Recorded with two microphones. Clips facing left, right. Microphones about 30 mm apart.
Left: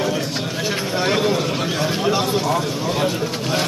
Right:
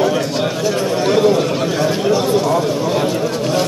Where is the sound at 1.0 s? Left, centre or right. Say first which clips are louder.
Right 6 dB; centre.